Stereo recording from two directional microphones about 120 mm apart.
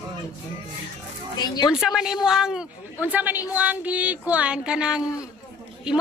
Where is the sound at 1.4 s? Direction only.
35° left (ahead or behind).